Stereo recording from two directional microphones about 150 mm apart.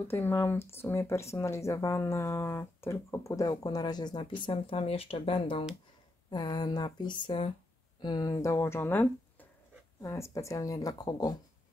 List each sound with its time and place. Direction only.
0.1 s speech: 15° left (ahead or behind); by 5.7 s 40° left (ahead or behind)
6.3 s speech: 25° left (ahead or behind)